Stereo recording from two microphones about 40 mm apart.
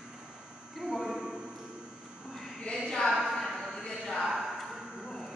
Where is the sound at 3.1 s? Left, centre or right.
Centre.